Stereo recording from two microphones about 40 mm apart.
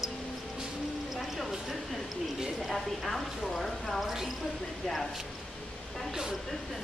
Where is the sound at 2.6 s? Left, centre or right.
Centre.